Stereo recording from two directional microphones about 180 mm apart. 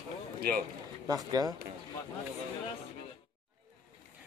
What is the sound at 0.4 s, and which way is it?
Speech, 55° right (ahead or behind).